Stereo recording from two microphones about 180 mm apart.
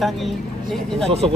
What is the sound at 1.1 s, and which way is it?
Speech, 35° right (ahead or behind).